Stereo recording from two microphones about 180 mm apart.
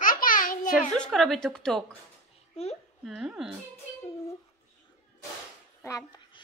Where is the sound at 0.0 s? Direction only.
50° left (ahead or behind).